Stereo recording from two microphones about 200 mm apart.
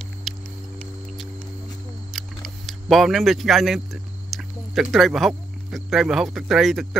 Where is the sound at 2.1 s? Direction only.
Centre (ahead or behind).